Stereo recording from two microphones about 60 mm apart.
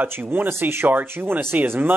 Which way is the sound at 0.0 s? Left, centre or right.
Right.